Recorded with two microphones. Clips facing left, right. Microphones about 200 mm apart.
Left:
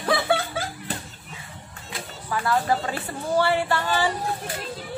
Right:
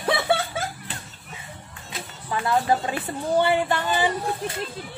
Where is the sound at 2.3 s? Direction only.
20° right (ahead or behind).